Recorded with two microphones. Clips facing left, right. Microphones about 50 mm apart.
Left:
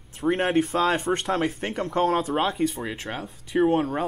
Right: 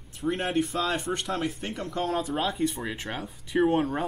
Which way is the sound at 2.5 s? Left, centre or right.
Centre.